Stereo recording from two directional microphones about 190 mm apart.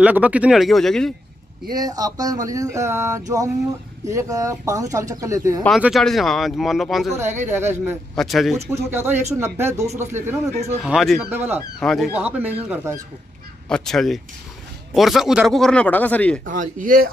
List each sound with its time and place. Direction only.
0.0 s speech: 10° right (ahead or behind)
1.7 s speech: 20° right (ahead or behind)
5.8 s speech: centre (ahead or behind)
7.2 s speech: 10° right (ahead or behind)
8.2 s speech: centre (ahead or behind)
8.5 s speech: 15° right (ahead or behind)
10.8 s speech: centre (ahead or behind)
11.8 s speech: centre (ahead or behind)
13.7 s speech: 5° left (ahead or behind)
16.4 s speech: 45° right (ahead or behind)